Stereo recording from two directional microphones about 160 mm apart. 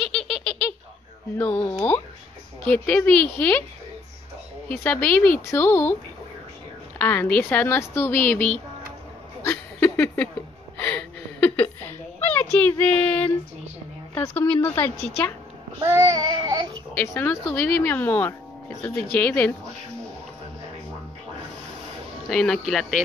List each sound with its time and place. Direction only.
0.0 s a sound: 5° left (ahead or behind)
1.4 s speech: 15° left (ahead or behind)
4.6 s speech: 10° left (ahead or behind)
7.0 s speech: 10° left (ahead or behind)
9.4 s a sound: 15° left (ahead or behind)
14.1 s speech: 10° left (ahead or behind)
15.8 s child singing: 15° right (ahead or behind)
16.9 s speech: 15° left (ahead or behind)
22.3 s speech: 5° left (ahead or behind)